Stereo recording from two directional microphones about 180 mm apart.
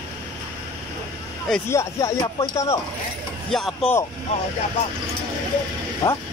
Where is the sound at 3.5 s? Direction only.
Centre (ahead or behind).